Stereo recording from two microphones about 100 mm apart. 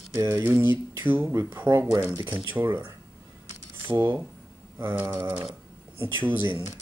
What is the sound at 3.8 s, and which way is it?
Speech, 20° right (ahead or behind).